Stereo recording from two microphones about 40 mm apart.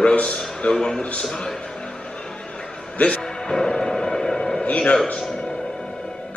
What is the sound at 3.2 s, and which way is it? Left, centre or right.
Music, centre.